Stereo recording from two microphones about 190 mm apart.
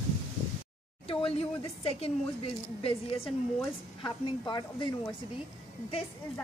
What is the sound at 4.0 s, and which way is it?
Speech, 20° left (ahead or behind).